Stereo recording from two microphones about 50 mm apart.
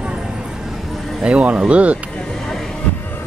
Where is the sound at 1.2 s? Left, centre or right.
Right.